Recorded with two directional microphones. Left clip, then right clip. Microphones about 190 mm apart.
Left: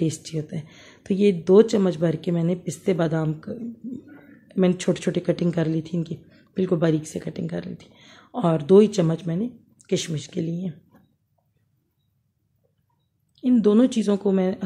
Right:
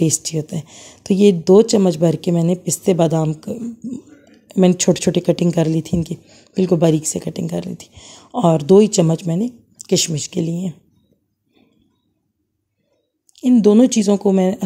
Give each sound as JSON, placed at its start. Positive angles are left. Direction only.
{"t": 0.0, "sound": "speech", "side_deg": -35}
{"t": 13.3, "sound": "speech", "side_deg": -35}